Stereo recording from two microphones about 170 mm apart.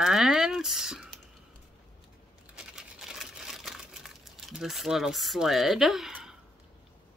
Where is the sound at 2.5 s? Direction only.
5° right (ahead or behind).